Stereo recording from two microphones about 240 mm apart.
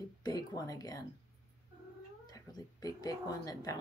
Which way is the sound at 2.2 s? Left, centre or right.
Centre.